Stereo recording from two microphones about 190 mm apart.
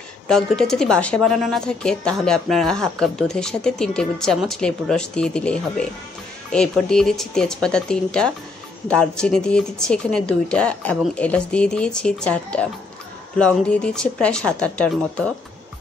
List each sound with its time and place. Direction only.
0.3 s a woman's voice: centre (ahead or behind)